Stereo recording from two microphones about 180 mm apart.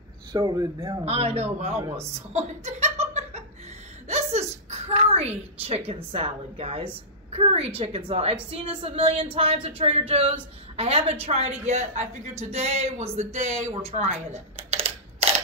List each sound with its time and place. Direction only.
0.3 s speech: 20° right (ahead or behind)
1.0 s speech: 35° right (ahead or behind)
2.0 s chuckle: 40° right (ahead or behind)
4.1 s a sound: 35° right (ahead or behind)
6.1 s a woman's voice: 30° right (ahead or behind)